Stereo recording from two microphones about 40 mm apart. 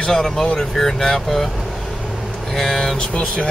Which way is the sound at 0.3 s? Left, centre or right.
Centre.